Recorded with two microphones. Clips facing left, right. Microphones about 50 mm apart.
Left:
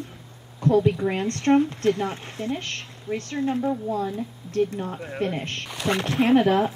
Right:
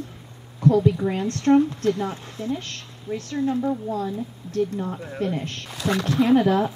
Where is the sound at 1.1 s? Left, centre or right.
Left.